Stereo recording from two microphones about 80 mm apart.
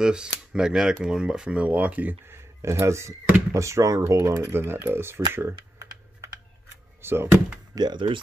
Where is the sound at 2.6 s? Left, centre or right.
Right.